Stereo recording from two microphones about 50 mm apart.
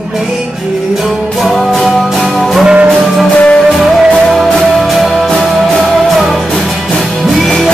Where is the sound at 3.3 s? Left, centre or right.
Left.